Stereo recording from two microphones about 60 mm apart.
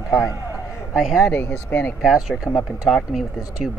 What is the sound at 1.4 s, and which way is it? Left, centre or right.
Speech, left.